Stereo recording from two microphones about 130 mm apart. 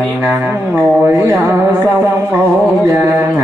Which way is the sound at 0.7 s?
5° right (ahead or behind).